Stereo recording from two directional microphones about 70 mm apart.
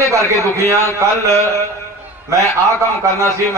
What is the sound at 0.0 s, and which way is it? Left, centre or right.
A man's voice, right.